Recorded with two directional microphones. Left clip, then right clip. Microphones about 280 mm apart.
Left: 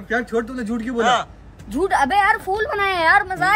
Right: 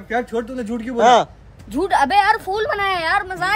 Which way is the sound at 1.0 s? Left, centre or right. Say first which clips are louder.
Right 5 dB; centre.